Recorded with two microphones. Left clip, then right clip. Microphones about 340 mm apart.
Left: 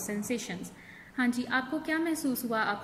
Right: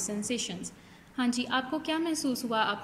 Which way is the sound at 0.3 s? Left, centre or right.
Centre.